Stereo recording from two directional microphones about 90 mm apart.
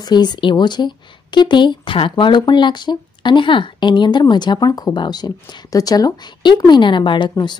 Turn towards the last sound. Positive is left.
turn(degrees=55)  # may be behind; listen again after turning